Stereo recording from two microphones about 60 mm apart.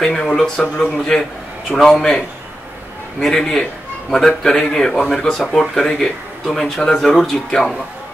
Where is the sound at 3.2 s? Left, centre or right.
Centre.